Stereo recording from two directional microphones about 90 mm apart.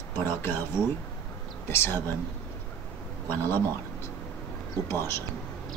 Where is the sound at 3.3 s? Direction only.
25° left (ahead or behind).